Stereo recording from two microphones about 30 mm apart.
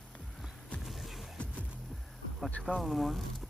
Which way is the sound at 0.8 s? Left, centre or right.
Centre.